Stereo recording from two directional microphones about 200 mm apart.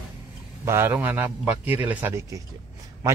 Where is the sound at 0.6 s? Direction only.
10° right (ahead or behind).